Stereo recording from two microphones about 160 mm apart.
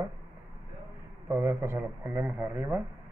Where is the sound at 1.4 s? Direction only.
15° right (ahead or behind).